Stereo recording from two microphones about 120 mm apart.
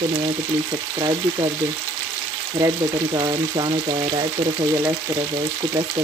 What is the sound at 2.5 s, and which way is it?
Frying, 35° right (ahead or behind).